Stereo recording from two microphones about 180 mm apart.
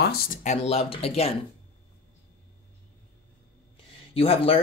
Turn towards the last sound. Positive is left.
turn(degrees=30)  # may be behind; listen again after turning